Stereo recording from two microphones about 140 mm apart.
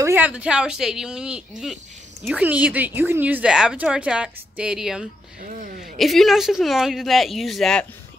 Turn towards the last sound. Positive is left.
turn(degrees=5)  # may be behind; listen again after turning